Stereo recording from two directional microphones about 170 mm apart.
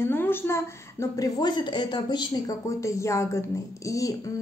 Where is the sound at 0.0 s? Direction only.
15° left (ahead or behind).